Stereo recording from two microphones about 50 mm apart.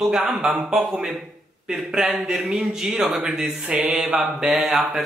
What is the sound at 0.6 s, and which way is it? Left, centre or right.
Speech, centre.